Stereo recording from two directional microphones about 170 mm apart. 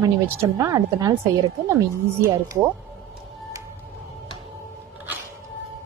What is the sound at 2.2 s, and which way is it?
Speech, 15° right (ahead or behind).